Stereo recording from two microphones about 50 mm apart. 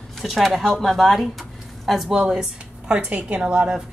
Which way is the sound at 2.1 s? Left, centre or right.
Centre.